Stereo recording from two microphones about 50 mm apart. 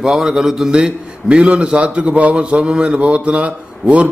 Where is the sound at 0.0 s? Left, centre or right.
Centre.